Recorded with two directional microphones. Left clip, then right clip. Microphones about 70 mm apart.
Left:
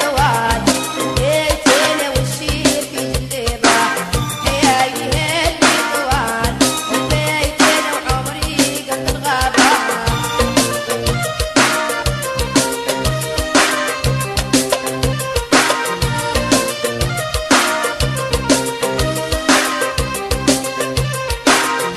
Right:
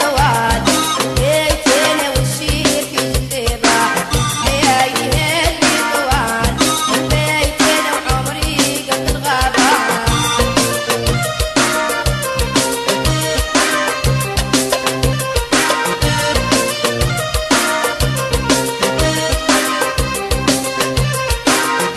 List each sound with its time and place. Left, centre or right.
0.0 s music: left
3.6 s music: left
13.5 s music: left
15.5 s music: left
21.5 s music: left